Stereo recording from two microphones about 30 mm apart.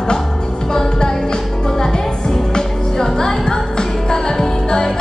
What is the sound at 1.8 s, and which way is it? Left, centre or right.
Music, left.